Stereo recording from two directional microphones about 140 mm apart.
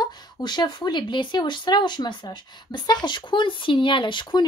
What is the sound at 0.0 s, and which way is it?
Speech, 30° left (ahead or behind).